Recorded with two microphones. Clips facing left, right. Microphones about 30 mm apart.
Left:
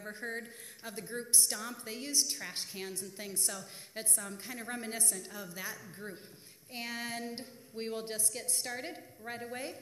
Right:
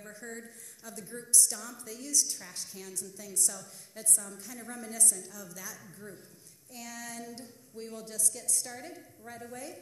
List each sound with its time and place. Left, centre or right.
0.0 s a woman's voice: left